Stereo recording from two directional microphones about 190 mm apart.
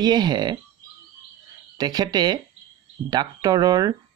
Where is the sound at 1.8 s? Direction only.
20° right (ahead or behind).